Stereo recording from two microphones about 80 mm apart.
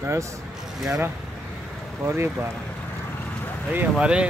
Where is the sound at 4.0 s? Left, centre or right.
Centre.